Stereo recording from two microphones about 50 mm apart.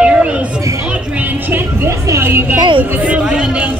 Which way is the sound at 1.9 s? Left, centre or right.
Right.